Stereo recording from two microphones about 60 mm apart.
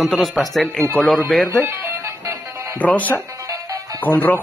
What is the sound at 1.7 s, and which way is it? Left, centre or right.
Music, right.